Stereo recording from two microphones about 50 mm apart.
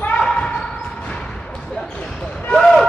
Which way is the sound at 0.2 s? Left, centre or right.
Centre.